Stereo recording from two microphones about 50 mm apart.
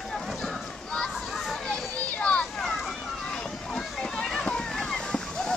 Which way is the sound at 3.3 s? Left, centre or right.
Centre.